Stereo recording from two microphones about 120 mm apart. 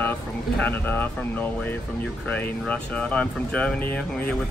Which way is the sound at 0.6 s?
15° left (ahead or behind).